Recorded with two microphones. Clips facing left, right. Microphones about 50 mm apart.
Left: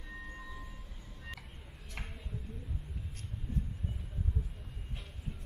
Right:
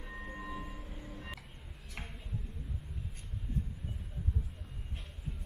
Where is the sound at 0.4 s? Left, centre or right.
Right.